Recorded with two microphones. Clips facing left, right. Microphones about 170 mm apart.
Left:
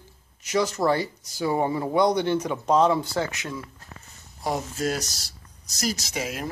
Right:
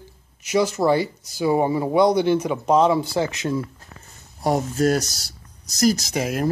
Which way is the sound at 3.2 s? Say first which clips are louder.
Right 6 dB; 25° right (ahead or behind).